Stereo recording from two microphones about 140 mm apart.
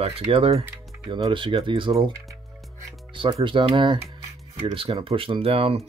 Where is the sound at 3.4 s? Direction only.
35° right (ahead or behind).